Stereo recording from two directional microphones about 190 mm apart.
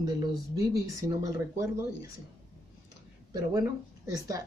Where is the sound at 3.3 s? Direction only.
20° right (ahead or behind).